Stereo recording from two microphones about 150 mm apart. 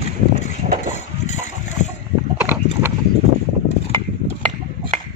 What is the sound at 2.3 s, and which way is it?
Clip-clop, 15° right (ahead or behind).